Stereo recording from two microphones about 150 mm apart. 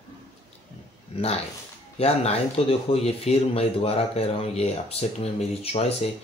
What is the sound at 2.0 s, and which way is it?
Speech, 45° left (ahead or behind).